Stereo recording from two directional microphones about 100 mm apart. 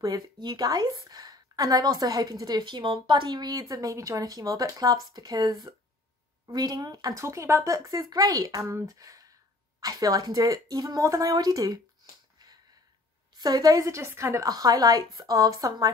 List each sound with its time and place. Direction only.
0.0 s a woman's voice: 45° right (ahead or behind)
13.4 s a woman's voice: 40° right (ahead or behind)
14.5 s a woman's voice: 40° right (ahead or behind)